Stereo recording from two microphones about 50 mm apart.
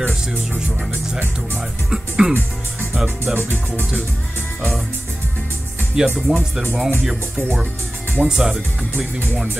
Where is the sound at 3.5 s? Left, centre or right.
Left.